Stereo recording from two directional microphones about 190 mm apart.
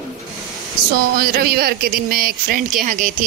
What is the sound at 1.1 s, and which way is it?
Speech, 55° right (ahead or behind).